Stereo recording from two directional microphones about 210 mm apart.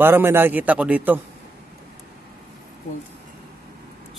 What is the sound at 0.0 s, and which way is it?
A man's voice, 10° right (ahead or behind).